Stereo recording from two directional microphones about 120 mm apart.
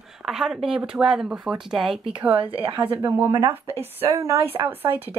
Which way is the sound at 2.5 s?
50° right (ahead or behind).